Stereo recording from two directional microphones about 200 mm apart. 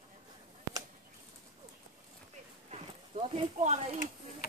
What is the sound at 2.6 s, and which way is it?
Clip-clop, 30° right (ahead or behind).